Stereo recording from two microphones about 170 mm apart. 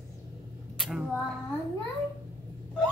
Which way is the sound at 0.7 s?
Centre (ahead or behind).